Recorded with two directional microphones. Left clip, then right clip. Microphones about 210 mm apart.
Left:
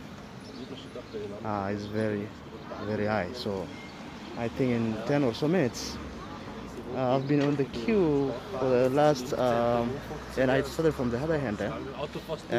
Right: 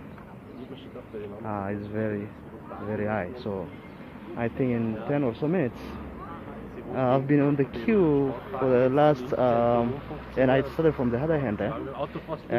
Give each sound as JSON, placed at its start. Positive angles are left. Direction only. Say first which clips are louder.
{"t": 1.4, "sound": "speech", "louder": "even", "side_deg": 15}
{"t": 4.6, "sound": "speech", "louder": "left 2 dB", "side_deg": 15}
{"t": 7.0, "sound": "speech", "louder": "right 3 dB", "side_deg": 0}